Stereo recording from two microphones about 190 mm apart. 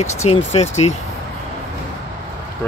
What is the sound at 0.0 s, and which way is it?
Speech, 35° left (ahead or behind).